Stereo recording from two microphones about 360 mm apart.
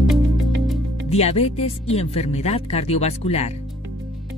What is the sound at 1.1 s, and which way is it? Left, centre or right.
Speech, centre.